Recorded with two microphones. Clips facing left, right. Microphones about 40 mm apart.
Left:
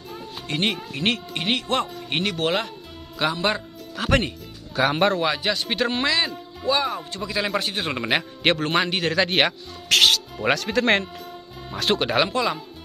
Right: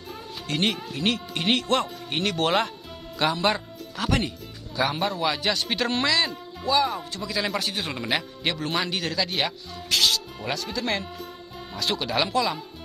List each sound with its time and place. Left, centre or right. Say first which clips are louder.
0.5 s speech: left 1 dB; centre
0.9 s speech: left 2 dB; left
1.3 s speech: even; centre
4.7 s speech: left 5 dB; left
5.2 s a man's voice: left 2 dB; centre; by 8.1 s left
8.4 s a man's voice: left 7 dB; left
8.6 s speech: left 5 dB; left
9.1 s speech: left 6 dB; left
12.2 s a man's voice: left 2 dB; left